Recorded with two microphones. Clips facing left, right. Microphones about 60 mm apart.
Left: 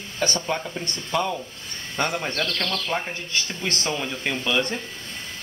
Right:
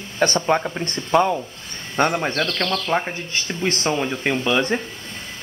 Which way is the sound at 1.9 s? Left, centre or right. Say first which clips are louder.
Right 6 dB; right.